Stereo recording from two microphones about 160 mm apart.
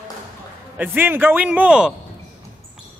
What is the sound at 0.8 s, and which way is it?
A man's voice, 10° right (ahead or behind).